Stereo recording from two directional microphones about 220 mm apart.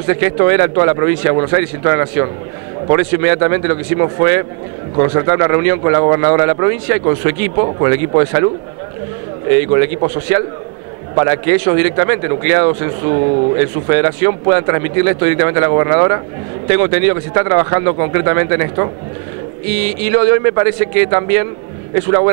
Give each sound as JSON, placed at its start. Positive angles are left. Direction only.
{"t": 0.0, "sound": "a man's voice", "side_deg": -20}
{"t": 9.5, "sound": "a man's voice", "side_deg": -15}